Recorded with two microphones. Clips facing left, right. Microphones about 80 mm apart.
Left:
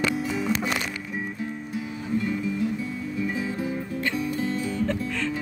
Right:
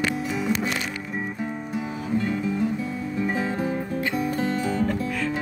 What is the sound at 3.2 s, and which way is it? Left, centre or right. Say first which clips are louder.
Music: right 4 dB; right.